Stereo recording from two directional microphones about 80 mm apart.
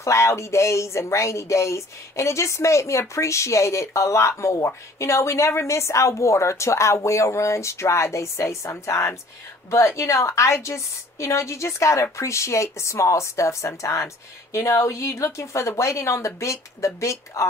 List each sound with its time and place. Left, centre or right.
0.0 s speech: left